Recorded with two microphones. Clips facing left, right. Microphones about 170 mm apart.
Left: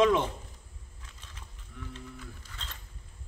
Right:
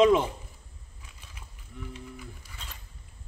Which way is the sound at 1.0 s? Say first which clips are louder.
Right 1 dB; 10° right (ahead or behind).